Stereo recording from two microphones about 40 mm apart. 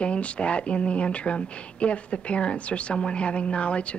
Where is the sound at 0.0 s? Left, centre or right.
Left.